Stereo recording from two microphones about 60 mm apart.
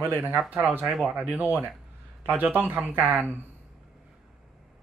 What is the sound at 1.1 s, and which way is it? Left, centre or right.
A man's voice, right.